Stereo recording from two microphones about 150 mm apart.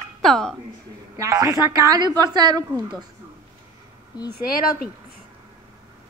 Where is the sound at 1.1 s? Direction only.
20° right (ahead or behind).